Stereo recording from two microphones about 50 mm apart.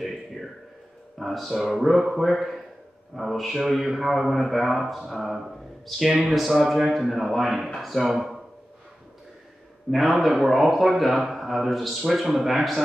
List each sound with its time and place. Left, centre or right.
0.0 s a sound: centre
1.1 s a man's voice: centre
9.8 s a man's voice: centre